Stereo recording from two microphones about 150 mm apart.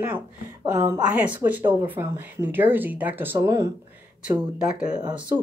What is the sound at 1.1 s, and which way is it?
Speech, 10° right (ahead or behind).